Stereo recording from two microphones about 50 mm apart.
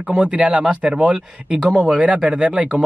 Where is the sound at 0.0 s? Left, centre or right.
Centre.